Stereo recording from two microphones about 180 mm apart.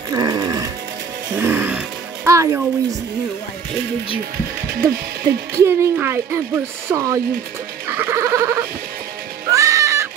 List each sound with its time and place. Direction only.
0.1 s music: 20° right (ahead or behind)
4.8 s speech: 15° right (ahead or behind)
7.9 s sheep: 15° right (ahead or behind)
9.5 s music: 15° right (ahead or behind)